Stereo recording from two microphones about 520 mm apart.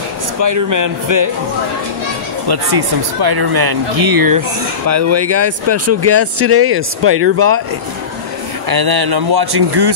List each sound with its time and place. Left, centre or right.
0.4 s speech: right
2.4 s speech: right
4.8 s speech: right
8.6 s speech: right